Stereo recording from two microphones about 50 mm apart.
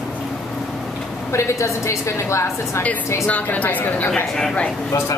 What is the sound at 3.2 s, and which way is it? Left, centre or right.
Speech, left.